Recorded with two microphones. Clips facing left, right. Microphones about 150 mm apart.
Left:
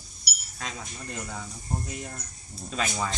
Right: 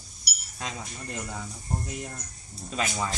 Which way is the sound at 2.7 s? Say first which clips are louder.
Even; 5° right (ahead or behind).